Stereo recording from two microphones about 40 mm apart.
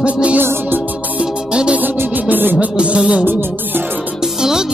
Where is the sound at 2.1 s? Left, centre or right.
Right.